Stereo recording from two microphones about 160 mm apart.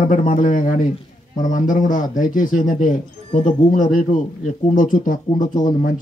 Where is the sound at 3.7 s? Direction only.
55° left (ahead or behind).